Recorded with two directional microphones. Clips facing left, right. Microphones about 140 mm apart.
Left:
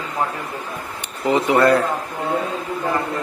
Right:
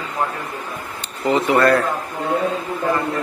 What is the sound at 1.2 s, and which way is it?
Speech, 15° left (ahead or behind).